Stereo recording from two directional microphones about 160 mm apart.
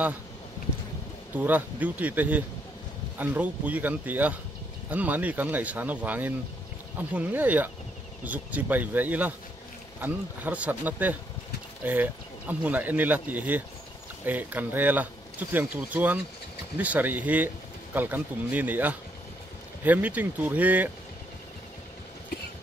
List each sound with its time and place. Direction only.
1.3 s speech: 10° right (ahead or behind)